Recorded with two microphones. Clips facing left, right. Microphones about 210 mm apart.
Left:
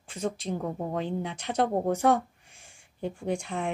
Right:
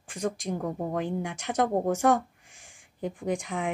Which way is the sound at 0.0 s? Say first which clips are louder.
Right 1 dB; 15° right (ahead or behind).